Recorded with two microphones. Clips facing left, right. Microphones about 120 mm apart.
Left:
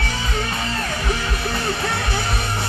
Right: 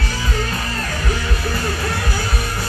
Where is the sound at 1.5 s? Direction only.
25° left (ahead or behind).